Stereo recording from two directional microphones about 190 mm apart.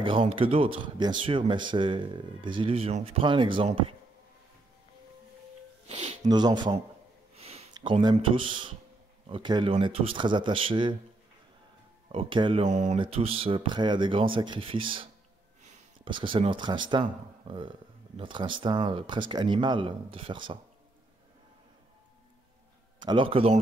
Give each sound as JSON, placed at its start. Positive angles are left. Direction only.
{"t": 0.0, "sound": "speech", "side_deg": -30}
{"t": 5.9, "sound": "speech", "side_deg": -35}
{"t": 6.2, "sound": "speech", "side_deg": -20}
{"t": 12.1, "sound": "speech", "side_deg": -25}
{"t": 12.6, "sound": "speech", "side_deg": -40}
{"t": 15.6, "sound": "a sound", "side_deg": -35}
{"t": 16.1, "sound": "speech", "side_deg": -25}
{"t": 22.9, "sound": "a man's voice", "side_deg": -25}